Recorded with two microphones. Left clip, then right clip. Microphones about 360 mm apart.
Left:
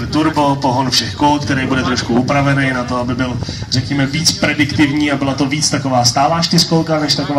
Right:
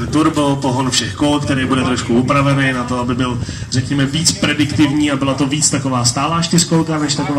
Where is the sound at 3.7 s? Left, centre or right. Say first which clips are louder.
Left 1 dB; centre.